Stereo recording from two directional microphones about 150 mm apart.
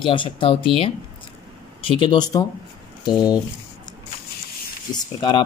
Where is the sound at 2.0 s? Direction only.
30° left (ahead or behind).